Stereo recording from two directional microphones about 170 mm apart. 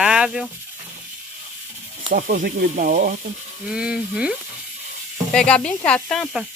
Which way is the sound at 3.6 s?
5° right (ahead or behind).